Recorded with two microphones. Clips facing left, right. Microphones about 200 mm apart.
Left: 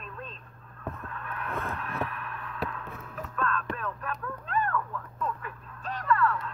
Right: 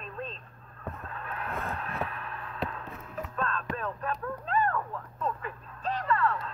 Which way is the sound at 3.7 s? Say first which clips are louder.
Right 2 dB; 30° right (ahead or behind).